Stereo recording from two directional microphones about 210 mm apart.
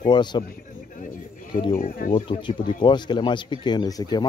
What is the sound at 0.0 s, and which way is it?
Speech, 20° left (ahead or behind).